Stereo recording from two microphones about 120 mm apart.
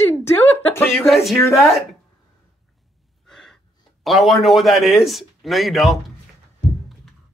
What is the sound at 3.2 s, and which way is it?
Gasp, 5° left (ahead or behind).